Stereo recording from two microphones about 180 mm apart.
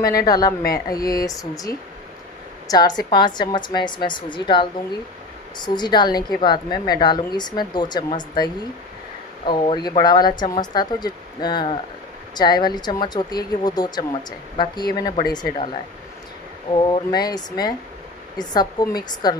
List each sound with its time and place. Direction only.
0.0 s a woman's voice: 20° left (ahead or behind)
2.7 s a woman's voice: 20° left (ahead or behind)
9.5 s a woman's voice: 25° left (ahead or behind)